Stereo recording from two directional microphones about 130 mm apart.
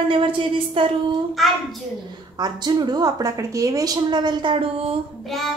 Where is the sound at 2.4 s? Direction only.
30° right (ahead or behind).